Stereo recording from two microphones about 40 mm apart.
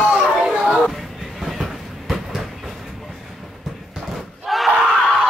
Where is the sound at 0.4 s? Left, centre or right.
Centre.